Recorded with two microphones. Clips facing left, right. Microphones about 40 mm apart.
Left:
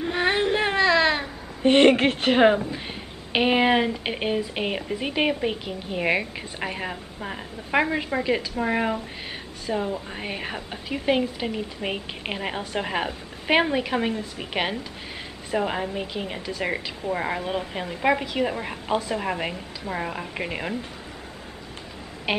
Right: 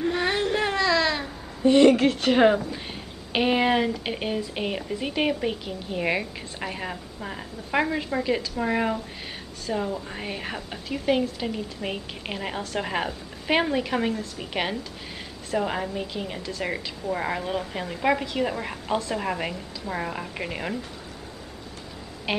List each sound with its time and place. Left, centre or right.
0.0 s a sound: left
1.6 s a woman's voice: left
2.3 s a woman's voice: centre